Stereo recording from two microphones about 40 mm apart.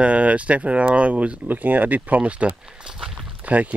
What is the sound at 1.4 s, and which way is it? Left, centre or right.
Speech, right.